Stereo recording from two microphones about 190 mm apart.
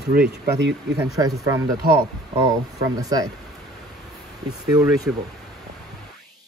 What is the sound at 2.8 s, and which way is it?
Speech, 20° right (ahead or behind).